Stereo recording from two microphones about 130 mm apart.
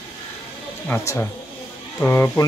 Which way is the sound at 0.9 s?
15° left (ahead or behind).